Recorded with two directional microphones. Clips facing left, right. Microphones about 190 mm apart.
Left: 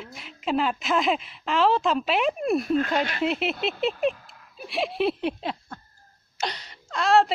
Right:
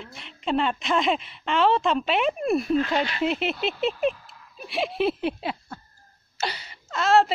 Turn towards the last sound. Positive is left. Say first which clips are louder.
# even
turn(degrees=0)  # may be behind; listen again after turning